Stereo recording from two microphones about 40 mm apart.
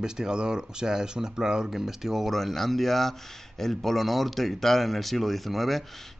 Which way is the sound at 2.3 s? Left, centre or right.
Centre.